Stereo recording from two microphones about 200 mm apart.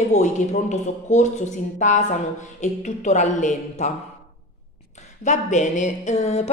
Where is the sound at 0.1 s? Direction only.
35° left (ahead or behind).